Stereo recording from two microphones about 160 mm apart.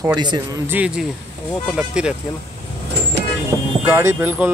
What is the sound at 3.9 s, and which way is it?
Speech, 15° right (ahead or behind).